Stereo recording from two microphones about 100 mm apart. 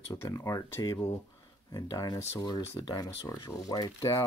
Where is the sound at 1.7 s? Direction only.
40° left (ahead or behind).